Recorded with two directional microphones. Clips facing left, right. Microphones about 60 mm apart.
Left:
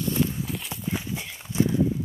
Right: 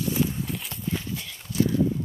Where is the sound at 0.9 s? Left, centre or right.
Centre.